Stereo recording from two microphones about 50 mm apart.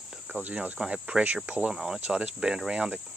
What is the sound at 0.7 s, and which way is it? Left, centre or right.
Speech, right.